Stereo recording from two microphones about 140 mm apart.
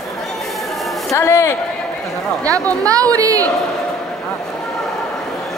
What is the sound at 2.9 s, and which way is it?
Speech, 25° right (ahead or behind).